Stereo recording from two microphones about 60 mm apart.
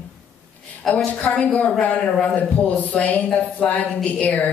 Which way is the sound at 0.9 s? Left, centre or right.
Left.